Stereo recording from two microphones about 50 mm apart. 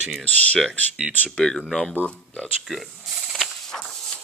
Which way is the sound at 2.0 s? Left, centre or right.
Left.